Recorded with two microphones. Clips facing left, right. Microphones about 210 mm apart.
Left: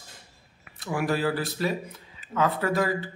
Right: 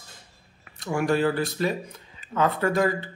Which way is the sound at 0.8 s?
5° left (ahead or behind).